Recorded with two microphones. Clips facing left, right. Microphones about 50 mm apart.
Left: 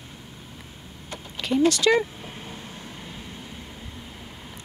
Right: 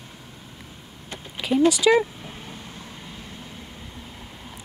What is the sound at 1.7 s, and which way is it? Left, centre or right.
Speech, centre.